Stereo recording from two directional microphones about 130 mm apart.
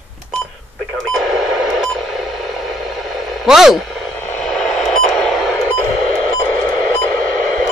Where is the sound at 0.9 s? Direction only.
Centre (ahead or behind).